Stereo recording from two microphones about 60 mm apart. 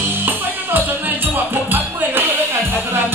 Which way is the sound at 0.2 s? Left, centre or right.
Right.